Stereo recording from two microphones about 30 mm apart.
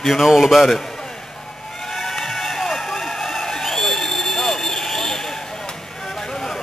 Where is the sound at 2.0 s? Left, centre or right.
Centre.